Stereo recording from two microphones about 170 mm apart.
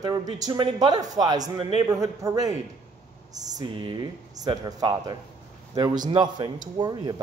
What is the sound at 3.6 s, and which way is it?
A man's voice, 25° right (ahead or behind).